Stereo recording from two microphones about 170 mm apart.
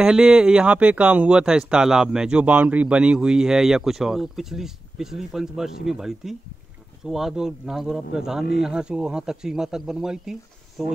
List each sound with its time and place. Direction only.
0.0 s speech: 5° right (ahead or behind)